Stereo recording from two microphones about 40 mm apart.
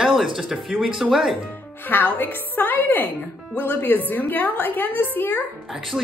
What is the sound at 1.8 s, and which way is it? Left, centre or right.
A woman's voice, left.